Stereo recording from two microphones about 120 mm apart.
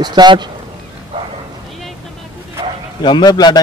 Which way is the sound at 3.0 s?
35° left (ahead or behind).